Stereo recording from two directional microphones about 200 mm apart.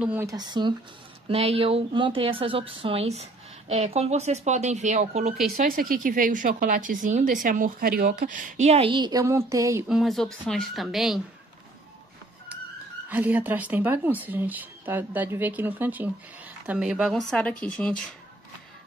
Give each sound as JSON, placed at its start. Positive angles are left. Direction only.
{"t": 0.0, "sound": "a woman's voice", "side_deg": -10}
{"t": 5.6, "sound": "a woman's voice", "side_deg": -45}
{"t": 9.8, "sound": "speech", "side_deg": 0}
{"t": 13.1, "sound": "speech", "side_deg": -10}